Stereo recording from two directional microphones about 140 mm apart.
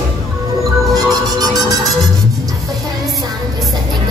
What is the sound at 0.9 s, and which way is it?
Music, 25° right (ahead or behind).